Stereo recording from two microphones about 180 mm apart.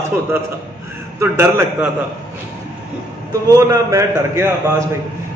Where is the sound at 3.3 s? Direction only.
20° right (ahead or behind).